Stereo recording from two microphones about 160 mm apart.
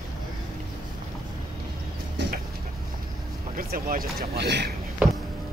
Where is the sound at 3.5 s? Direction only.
60° right (ahead or behind); by 4.7 s 90° right.